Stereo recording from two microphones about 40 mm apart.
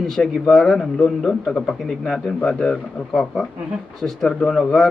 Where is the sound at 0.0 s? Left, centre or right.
Centre.